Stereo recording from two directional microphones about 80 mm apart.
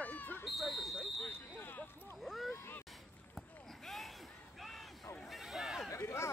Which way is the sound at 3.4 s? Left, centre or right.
Centre.